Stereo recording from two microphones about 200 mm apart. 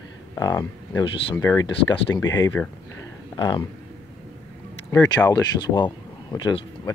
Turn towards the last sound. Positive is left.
turn(degrees=20)  # may be behind; listen again after turning